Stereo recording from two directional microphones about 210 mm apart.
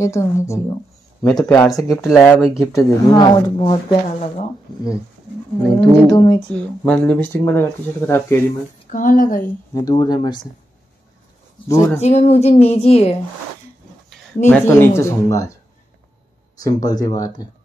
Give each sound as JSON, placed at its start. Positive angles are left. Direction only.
{"t": 0.0, "sound": "speech", "side_deg": 15}
{"t": 2.0, "sound": "speech", "side_deg": 0}
{"t": 2.6, "sound": "speech", "side_deg": 15}
{"t": 5.6, "sound": "roaring cats", "side_deg": 5}
{"t": 6.1, "sound": "speech", "side_deg": 20}
{"t": 6.5, "sound": "speech", "side_deg": 5}
{"t": 8.9, "sound": "a woman's voice", "side_deg": 40}
{"t": 9.8, "sound": "speech", "side_deg": 20}
{"t": 11.6, "sound": "speech", "side_deg": 15}
{"t": 12.0, "sound": "a woman's voice", "side_deg": 30}
{"t": 14.5, "sound": "speech", "side_deg": 10}
{"t": 16.5, "sound": "speech", "side_deg": 15}